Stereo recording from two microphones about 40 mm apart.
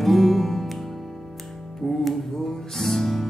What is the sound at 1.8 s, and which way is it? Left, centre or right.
Music, centre.